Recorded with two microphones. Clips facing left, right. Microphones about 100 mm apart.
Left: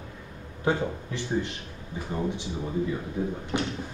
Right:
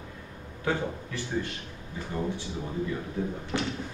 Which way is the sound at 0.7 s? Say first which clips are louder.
Left 3 dB; 20° left (ahead or behind).